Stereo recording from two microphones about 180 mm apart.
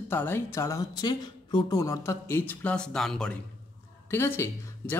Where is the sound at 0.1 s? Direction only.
10° left (ahead or behind).